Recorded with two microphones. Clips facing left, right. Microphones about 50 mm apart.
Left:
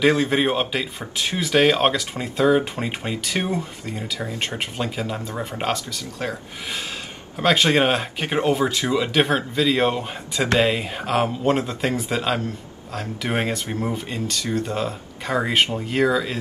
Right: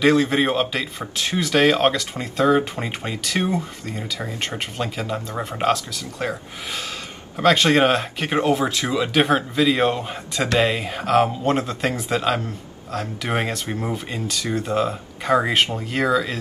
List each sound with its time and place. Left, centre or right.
0.0 s speech: centre
2.8 s speech: centre
3.3 s speech: left
4.6 s speech: centre
7.4 s speech: centre
15.7 s speech: centre